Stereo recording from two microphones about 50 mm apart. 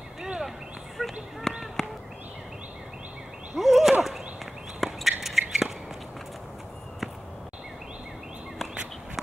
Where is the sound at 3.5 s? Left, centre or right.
Centre.